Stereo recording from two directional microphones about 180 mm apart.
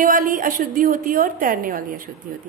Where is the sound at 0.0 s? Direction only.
50° right (ahead or behind).